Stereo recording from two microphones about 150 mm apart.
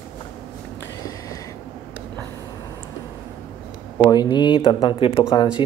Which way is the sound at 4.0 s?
25° left (ahead or behind).